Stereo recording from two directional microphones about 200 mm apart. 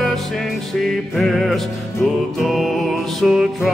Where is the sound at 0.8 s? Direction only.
Centre (ahead or behind).